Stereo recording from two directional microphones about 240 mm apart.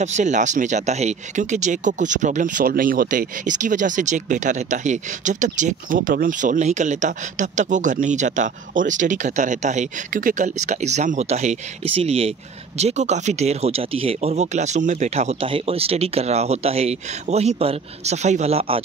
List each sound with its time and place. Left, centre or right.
0.0 s speech: right